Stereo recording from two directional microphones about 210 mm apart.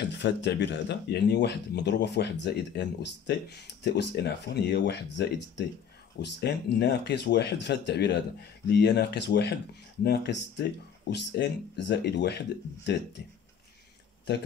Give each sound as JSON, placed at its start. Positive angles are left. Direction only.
{"t": 0.0, "sound": "speech", "side_deg": 55}